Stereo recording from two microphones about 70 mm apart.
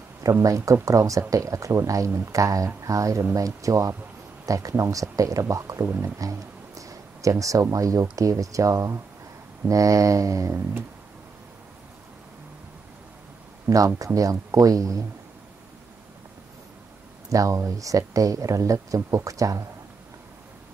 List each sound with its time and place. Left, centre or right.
0.2 s speech: right
5.9 s speech: right
6.1 s a sound: right
7.7 s speech: right
13.9 s speech: right
17.3 s speech: right